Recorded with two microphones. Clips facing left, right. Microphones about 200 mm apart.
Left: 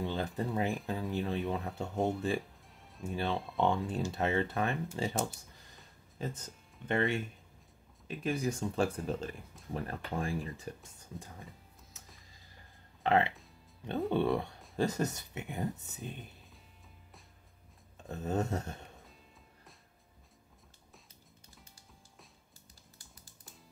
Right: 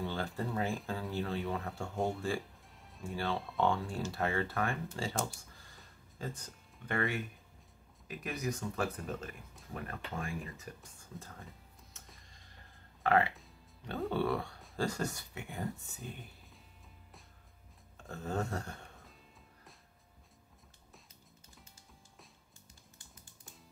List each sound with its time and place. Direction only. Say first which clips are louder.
0.0 s speech: left 2 dB; 20° left (ahead or behind)
2.0 s speech: left 3 dB; centre (ahead or behind)
2.7 s music: even; centre (ahead or behind)
3.0 s speech: left 2 dB; 20° left (ahead or behind)
3.3 s speech: left 1 dB; centre (ahead or behind)
3.6 s speech: left 2 dB; 20° left (ahead or behind)
11.0 s speech: left 2 dB; 15° left (ahead or behind)
11.9 s music: left 1 dB; centre (ahead or behind)
13.0 s speech: left 1 dB; 20° left (ahead or behind)
17.9 s a sound: left 3 dB; 20° left (ahead or behind)